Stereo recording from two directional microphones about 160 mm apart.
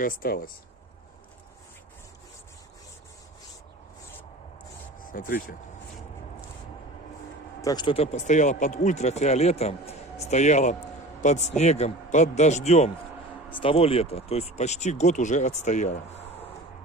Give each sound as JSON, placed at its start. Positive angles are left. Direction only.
{"t": 0.0, "sound": "speech", "side_deg": 65}
{"t": 5.0, "sound": "speech", "side_deg": 60}
{"t": 7.6, "sound": "speech", "side_deg": 30}
{"t": 13.5, "sound": "speech", "side_deg": 35}